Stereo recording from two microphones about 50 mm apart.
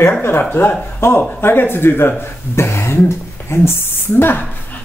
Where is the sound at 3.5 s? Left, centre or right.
Left.